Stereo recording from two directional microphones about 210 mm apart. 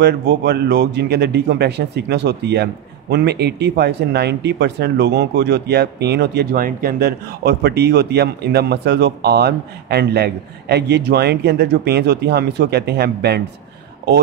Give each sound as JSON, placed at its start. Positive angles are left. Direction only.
{"t": 0.0, "sound": "speech", "side_deg": -50}